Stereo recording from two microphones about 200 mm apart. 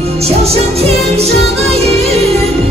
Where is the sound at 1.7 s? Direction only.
30° right (ahead or behind).